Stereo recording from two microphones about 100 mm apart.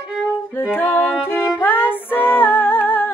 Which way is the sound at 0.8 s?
20° left (ahead or behind).